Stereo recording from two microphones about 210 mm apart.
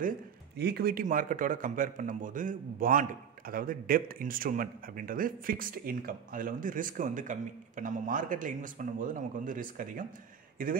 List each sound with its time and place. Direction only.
0.6 s speech: 50° right (ahead or behind)